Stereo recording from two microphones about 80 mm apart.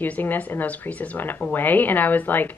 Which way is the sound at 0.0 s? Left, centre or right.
Left.